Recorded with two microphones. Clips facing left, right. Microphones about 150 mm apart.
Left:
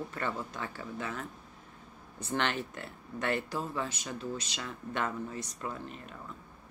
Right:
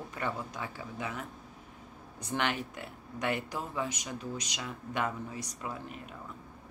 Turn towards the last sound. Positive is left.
turn(degrees=-10)  # may be behind; listen again after turning